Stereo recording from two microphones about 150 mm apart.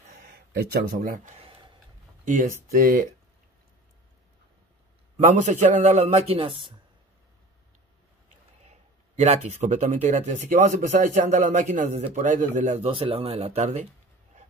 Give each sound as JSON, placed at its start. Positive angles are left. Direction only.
{"t": 0.2, "sound": "speech", "side_deg": -85}
{"t": 5.3, "sound": "speech", "side_deg": -55}
{"t": 8.6, "sound": "speech", "side_deg": -45}